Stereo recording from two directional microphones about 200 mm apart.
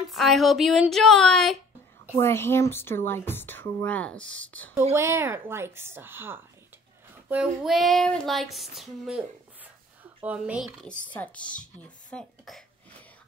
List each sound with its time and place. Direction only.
0.1 s female singing: centre (ahead or behind)
2.1 s a woman's voice: 10° left (ahead or behind)
4.9 s a woman's voice: 15° right (ahead or behind)
7.2 s female singing: 5° right (ahead or behind)
10.2 s female singing: 5° right (ahead or behind)